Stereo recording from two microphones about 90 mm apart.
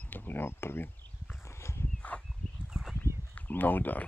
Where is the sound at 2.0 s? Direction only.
15° left (ahead or behind).